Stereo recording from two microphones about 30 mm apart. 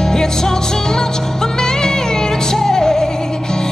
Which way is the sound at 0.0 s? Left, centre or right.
Centre.